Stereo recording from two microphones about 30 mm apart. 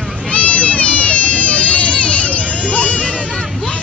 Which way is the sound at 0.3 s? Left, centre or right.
Left.